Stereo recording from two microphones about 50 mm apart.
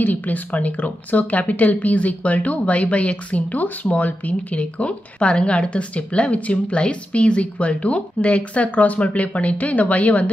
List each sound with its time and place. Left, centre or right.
0.0 s speech: left